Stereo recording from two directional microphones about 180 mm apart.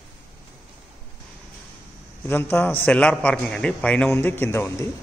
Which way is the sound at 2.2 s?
10° left (ahead or behind).